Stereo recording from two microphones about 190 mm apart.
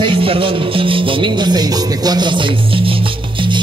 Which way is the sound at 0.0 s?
30° right (ahead or behind).